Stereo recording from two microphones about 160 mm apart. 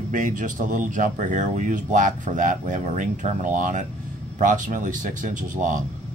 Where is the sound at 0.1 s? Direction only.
55° right (ahead or behind).